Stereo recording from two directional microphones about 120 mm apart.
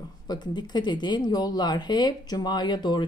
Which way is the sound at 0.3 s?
40° left (ahead or behind).